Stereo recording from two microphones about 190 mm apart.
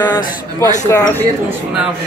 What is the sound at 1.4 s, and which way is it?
Speech, 5° right (ahead or behind).